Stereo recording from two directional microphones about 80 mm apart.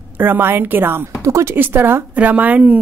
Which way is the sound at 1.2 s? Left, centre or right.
Right.